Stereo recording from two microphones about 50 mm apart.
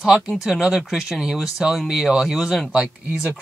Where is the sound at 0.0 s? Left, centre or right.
Centre.